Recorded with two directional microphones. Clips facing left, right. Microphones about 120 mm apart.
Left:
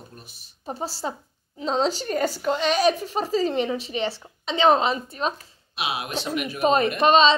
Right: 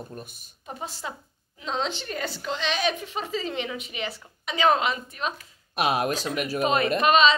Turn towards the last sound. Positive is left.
turn(degrees=30)  # may be behind; listen again after turning